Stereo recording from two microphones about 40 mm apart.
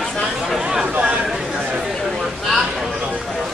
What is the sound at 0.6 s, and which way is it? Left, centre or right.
Chatter, right.